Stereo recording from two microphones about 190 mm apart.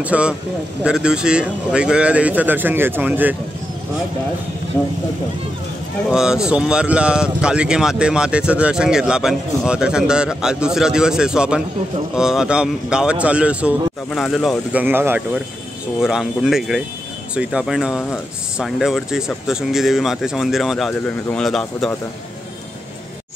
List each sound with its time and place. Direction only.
0.0 s speech: 5° right (ahead or behind)
6.0 s speech: 5° right (ahead or behind)